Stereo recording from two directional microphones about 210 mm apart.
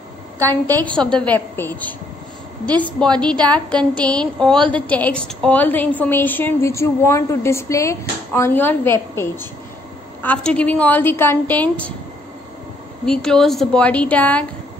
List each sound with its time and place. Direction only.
0.4 s a woman's voice: 15° right (ahead or behind)
0.9 s a woman's voice: 5° left (ahead or behind)
13.0 s a woman's voice: 5° left (ahead or behind)